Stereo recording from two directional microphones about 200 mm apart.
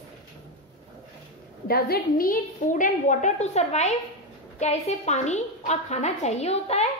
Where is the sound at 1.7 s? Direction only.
50° left (ahead or behind); by 6.9 s 30° left (ahead or behind).